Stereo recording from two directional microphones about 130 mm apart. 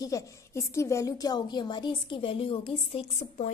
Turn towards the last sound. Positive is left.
turn(degrees=50)  # may be behind; listen again after turning